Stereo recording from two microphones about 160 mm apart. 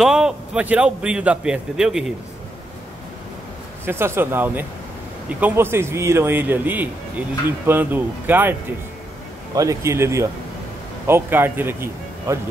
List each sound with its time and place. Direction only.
0.0 s a man's voice: 5° right (ahead or behind)
3.8 s speech: 15° right (ahead or behind)
9.6 s a man's voice: 20° right (ahead or behind)